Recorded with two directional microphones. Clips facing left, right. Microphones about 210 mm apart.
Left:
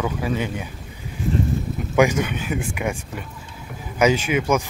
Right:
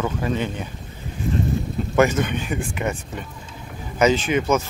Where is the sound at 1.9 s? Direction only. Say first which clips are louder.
Even; 10° left (ahead or behind).